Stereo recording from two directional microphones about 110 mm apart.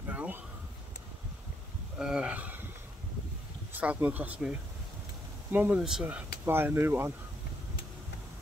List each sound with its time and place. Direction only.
0.1 s a sound: 15° right (ahead or behind)
2.0 s speech: 5° right (ahead or behind)
3.7 s speech: 15° right (ahead or behind)
5.8 s speech: 5° right (ahead or behind)
6.0 s speech: 20° right (ahead or behind)